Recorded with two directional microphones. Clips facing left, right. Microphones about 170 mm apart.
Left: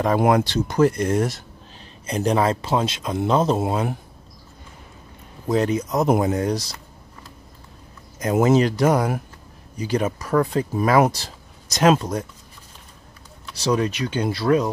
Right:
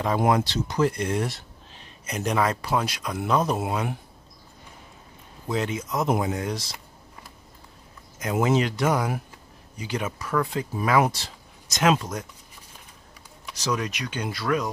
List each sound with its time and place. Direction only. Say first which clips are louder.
0.0 s speech: left 4 dB; 60° left (ahead or behind); by 1.4 s 45° left (ahead or behind)
2.0 s speech: left 5 dB; 30° left (ahead or behind)
5.5 s speech: left 7 dB; 40° left (ahead or behind)
8.2 s speech: left 6 dB; 40° left (ahead or behind)
13.6 s speech: left 7 dB; 30° left (ahead or behind)